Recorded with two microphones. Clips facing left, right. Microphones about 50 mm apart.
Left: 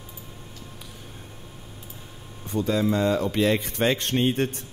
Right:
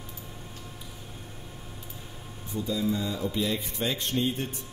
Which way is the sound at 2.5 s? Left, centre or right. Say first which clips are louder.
Left 6 dB; left.